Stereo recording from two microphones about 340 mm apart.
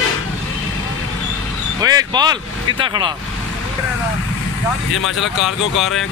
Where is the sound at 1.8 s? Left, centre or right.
Centre.